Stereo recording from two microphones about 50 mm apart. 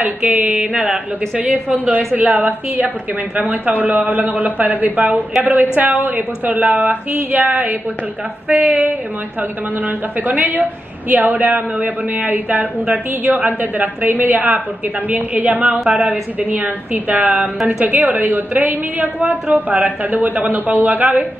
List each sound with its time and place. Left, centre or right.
0.2 s mantra: right
1.4 s a woman's voice: right